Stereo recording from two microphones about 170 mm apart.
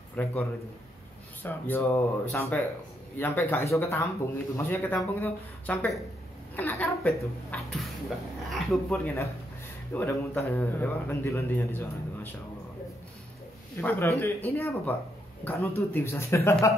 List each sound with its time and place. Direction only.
0.1 s a man's voice: 10° left (ahead or behind)
6.5 s a sound: 10° left (ahead or behind)
7.5 s a man's voice: 10° left (ahead or behind)
13.7 s a man's voice: 15° left (ahead or behind)